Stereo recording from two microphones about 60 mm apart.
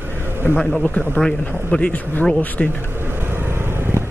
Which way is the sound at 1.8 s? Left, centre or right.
Left.